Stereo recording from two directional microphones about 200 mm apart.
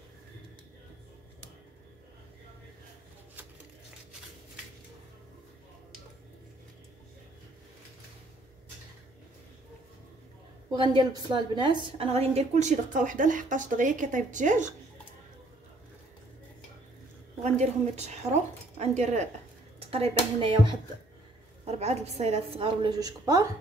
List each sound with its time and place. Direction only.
10.7 s a woman's voice: 20° right (ahead or behind); by 14.7 s 40° right (ahead or behind)
17.4 s a woman's voice: 35° right (ahead or behind); by 23.4 s 20° right (ahead or behind)